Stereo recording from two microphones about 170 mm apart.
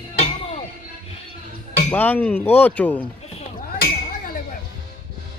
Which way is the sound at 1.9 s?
10° left (ahead or behind).